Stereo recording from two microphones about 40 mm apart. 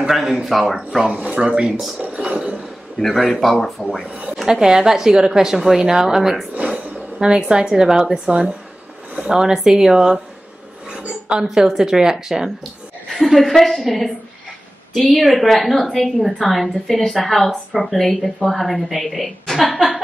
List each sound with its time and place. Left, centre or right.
0.1 s a woman's voice: centre
1.1 s speech: right
2.0 s a sound: right
3.0 s a woman's voice: centre
4.5 s a woman's voice: centre
8.3 s speech: right
9.3 s a woman's voice: centre
11.4 s a woman's voice: centre
13.2 s a woman's voice: centre